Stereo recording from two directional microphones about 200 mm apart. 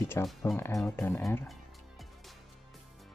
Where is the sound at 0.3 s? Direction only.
Centre (ahead or behind).